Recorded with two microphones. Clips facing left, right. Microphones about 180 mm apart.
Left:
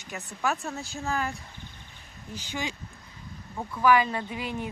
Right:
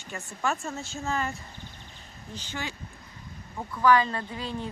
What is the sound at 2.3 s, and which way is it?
Speech, 15° left (ahead or behind).